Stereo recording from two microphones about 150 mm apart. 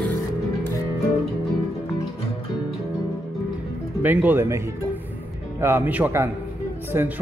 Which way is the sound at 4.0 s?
10° right (ahead or behind).